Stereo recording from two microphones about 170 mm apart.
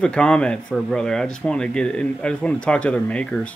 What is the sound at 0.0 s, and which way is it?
Speech, 5° left (ahead or behind).